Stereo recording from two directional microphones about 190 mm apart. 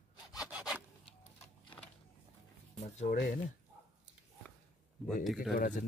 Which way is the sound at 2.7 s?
35° left (ahead or behind).